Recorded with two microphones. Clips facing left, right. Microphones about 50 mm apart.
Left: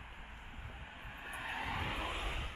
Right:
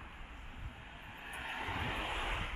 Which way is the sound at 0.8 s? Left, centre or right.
Centre.